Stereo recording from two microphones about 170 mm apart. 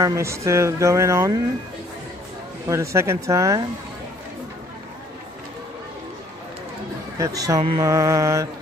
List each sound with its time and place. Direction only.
0.0 s speech: 15° right (ahead or behind)
2.7 s speech: 15° right (ahead or behind)
7.2 s speech: 20° right (ahead or behind)